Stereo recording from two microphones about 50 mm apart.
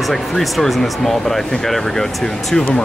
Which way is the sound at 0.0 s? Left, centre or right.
Centre.